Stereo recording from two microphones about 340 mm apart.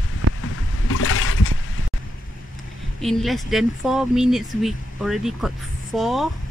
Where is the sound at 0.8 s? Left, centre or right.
Left.